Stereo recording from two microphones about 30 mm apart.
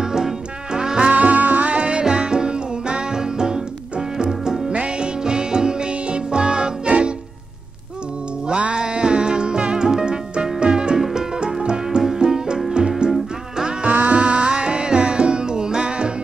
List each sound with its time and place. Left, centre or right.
0.0 s music: centre
1.1 s music: right
1.8 s music: right
4.6 s music: right
8.5 s music: right
8.7 s music: right
13.0 s music: right